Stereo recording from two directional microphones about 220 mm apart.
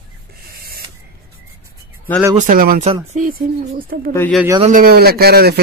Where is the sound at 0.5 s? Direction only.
45° right (ahead or behind).